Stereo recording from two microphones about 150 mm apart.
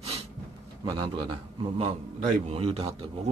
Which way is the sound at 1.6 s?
45° right (ahead or behind).